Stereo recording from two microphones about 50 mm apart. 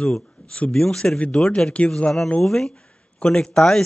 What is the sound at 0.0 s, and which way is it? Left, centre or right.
Speech, left.